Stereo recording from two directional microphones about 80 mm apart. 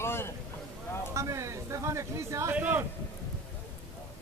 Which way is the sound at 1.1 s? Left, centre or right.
Right.